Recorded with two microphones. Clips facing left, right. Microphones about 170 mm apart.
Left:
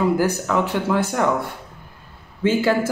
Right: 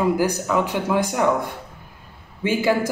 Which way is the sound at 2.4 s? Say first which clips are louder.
Left 2 dB; 15° right (ahead or behind).